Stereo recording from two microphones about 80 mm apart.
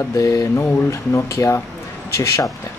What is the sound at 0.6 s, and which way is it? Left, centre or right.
Speech, left.